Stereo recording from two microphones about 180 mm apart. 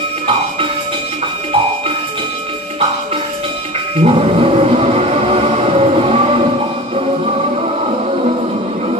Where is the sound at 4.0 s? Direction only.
35° right (ahead or behind).